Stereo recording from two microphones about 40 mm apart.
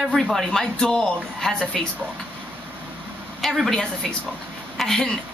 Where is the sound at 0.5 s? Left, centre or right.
Centre.